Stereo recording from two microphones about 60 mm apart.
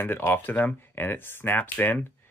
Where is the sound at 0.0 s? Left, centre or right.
Left.